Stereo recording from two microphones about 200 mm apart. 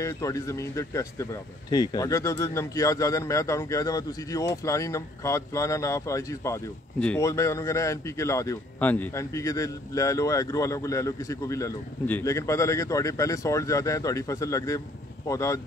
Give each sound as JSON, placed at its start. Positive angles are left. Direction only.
{"t": 0.0, "sound": "speech", "side_deg": 15}